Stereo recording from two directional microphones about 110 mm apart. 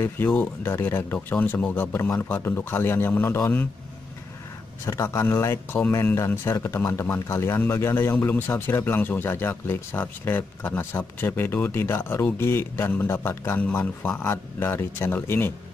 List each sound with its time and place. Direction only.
0.0 s a man's voice: 15° left (ahead or behind)
4.8 s a man's voice: 25° left (ahead or behind)